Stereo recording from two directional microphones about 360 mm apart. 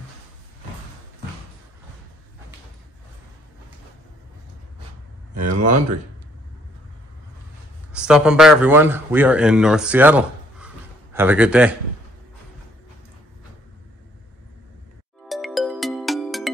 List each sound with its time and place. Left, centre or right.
5.5 s speech: right
7.9 s a man's voice: centre
15.2 s music: centre